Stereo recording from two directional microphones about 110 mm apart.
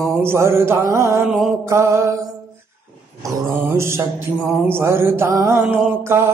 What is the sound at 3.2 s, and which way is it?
Mantra, 25° right (ahead or behind).